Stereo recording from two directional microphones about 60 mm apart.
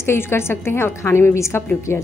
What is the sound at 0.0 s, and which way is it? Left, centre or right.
A woman's voice, left.